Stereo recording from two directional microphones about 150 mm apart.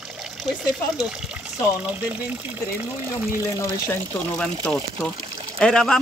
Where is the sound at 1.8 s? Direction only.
10° right (ahead or behind).